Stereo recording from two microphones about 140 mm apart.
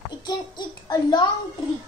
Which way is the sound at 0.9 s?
30° left (ahead or behind).